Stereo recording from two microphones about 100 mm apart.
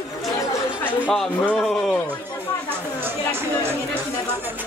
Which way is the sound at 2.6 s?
20° right (ahead or behind).